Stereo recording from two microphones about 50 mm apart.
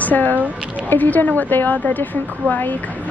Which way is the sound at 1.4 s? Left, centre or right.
Left.